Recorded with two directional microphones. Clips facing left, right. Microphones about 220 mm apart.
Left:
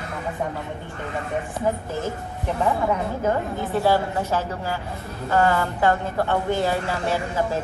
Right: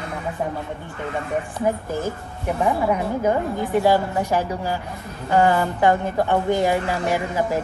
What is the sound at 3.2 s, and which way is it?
A woman's voice, 15° right (ahead or behind).